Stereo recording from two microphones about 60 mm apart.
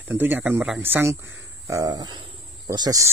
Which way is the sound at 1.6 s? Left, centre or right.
Right.